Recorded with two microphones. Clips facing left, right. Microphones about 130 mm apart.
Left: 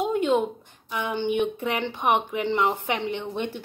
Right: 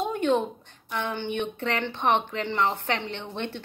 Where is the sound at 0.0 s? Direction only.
15° left (ahead or behind).